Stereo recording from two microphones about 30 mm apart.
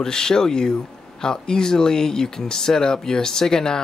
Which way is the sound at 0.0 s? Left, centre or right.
Left.